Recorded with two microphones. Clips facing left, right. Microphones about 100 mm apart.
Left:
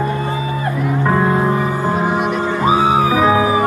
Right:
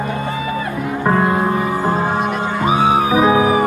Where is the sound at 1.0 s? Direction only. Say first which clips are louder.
Right 1 dB; 10° right (ahead or behind).